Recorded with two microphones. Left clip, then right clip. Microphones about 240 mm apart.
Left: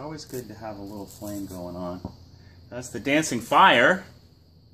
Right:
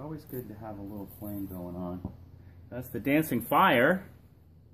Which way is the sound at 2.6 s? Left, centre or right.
Right.